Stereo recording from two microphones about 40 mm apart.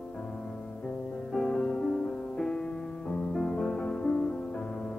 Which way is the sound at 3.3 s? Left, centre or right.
Centre.